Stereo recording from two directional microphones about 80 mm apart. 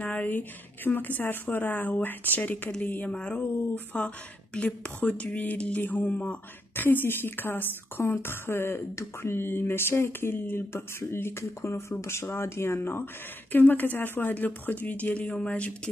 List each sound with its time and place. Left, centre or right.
0.0 s speech: centre